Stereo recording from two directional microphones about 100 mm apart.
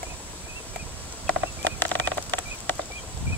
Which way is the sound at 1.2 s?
20° left (ahead or behind).